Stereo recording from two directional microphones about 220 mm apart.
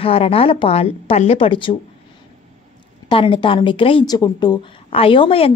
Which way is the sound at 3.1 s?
20° left (ahead or behind).